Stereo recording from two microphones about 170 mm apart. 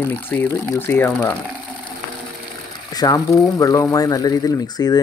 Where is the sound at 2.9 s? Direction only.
20° left (ahead or behind).